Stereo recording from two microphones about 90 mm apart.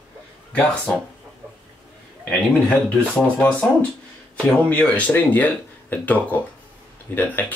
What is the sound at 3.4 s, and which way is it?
Speech, 15° left (ahead or behind).